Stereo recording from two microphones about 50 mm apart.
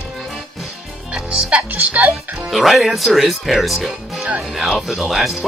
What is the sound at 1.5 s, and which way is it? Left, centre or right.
Speech, right.